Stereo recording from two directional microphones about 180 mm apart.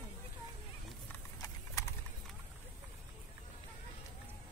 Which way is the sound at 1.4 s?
15° left (ahead or behind).